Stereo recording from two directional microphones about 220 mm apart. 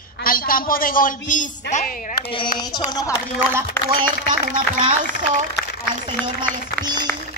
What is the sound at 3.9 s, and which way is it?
Speech, 40° right (ahead or behind).